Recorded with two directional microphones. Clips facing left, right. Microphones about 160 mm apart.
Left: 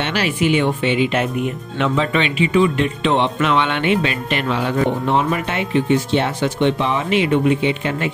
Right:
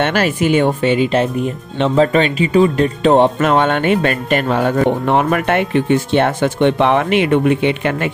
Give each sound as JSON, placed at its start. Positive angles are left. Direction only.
{"t": 0.0, "sound": "speech", "side_deg": -50}